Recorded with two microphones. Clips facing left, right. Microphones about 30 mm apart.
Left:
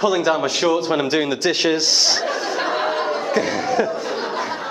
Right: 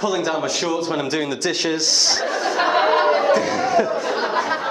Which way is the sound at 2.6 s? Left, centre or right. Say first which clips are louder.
Right 7 dB; centre.